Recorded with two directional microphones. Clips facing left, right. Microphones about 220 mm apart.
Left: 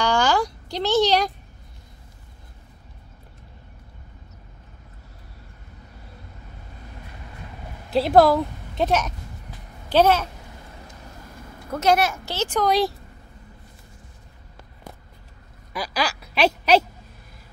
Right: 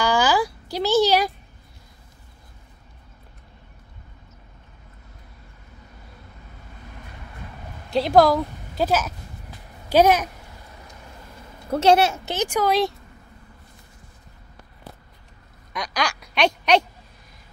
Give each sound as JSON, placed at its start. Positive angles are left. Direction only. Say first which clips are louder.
{"t": 0.0, "sound": "a sound", "louder": "right 1 dB", "side_deg": -5}
{"t": 7.9, "sound": "a woman's voice", "louder": "left 1 dB", "side_deg": 5}
{"t": 9.8, "sound": "a child's voice", "louder": "right 1 dB", "side_deg": -15}
{"t": 11.7, "sound": "speech", "louder": "right 3 dB", "side_deg": -30}
{"t": 12.6, "sound": "speech", "louder": "left 1 dB", "side_deg": 0}
{"t": 15.7, "sound": "speech", "louder": "left 1 dB", "side_deg": 5}